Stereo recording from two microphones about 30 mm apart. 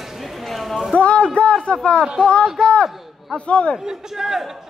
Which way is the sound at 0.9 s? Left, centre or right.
Left.